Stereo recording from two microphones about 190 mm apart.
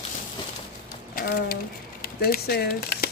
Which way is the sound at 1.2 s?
50° left (ahead or behind).